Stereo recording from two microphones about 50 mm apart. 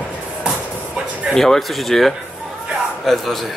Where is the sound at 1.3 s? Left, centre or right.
Centre.